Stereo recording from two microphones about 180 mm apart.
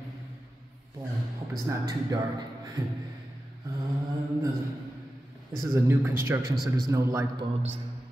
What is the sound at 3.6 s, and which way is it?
Mantra, 20° right (ahead or behind).